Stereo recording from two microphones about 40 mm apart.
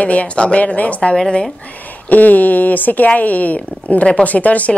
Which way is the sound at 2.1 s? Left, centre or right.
Left.